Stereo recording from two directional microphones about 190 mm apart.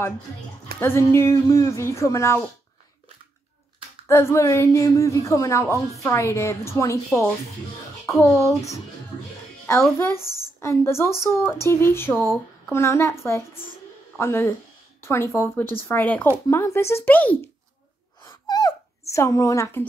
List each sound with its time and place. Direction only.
0.7 s speech: 15° left (ahead or behind)
4.1 s speech: 15° left (ahead or behind)
9.9 s speech: 15° left (ahead or behind)
18.2 s a sound: 20° left (ahead or behind)